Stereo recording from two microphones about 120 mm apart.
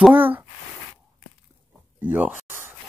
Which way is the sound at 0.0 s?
15° right (ahead or behind).